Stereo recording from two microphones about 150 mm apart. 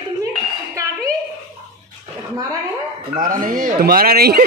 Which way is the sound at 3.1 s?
65° right (ahead or behind).